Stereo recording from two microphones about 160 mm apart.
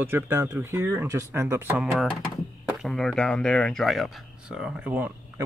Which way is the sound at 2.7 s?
Centre (ahead or behind).